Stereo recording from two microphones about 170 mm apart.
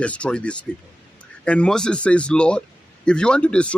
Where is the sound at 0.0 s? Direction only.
5° left (ahead or behind).